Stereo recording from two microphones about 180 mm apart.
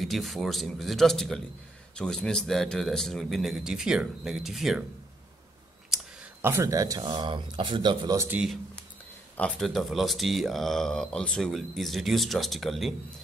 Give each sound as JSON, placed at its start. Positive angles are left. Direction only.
{"t": 0.0, "sound": "speech", "side_deg": 0}
{"t": 6.4, "sound": "speech", "side_deg": -15}
{"t": 7.0, "sound": "speech", "side_deg": -30}
{"t": 8.3, "sound": "speech", "side_deg": -5}